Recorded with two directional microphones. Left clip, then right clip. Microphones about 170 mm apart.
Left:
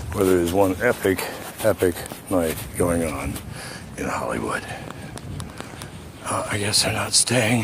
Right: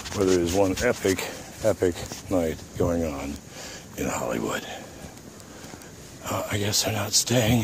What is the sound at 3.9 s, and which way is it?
Speech, 40° right (ahead or behind).